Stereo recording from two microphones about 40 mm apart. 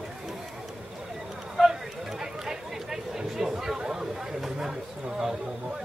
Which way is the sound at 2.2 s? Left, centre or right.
Centre.